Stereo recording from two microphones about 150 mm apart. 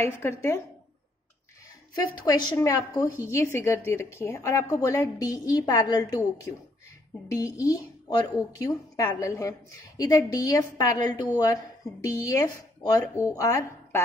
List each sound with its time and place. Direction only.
0.0 s speech: 15° left (ahead or behind)
2.2 s a woman's voice: 25° left (ahead or behind)